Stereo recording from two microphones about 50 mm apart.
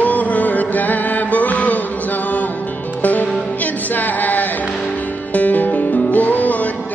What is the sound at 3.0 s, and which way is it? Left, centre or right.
Music, left.